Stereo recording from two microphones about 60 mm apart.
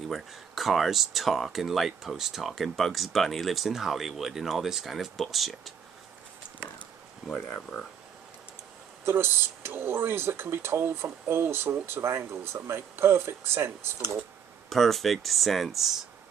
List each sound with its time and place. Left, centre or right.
0.1 s speech: centre
6.8 s a sound: centre
9.0 s speech: right
14.7 s speech: centre